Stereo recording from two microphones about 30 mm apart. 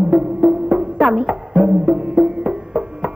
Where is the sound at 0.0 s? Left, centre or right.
Right.